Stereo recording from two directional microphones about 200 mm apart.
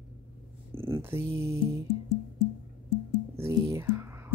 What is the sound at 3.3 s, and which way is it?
Speech, 15° right (ahead or behind).